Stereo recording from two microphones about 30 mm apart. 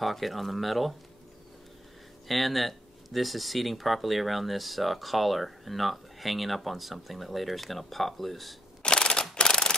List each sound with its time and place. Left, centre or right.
0.0 s speech: centre
2.2 s speech: centre
8.8 s a sound: left